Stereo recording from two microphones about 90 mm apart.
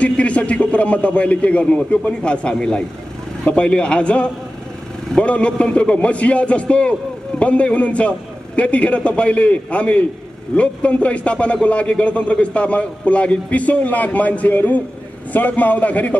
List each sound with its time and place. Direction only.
0.0 s a man's voice: 15° left (ahead or behind)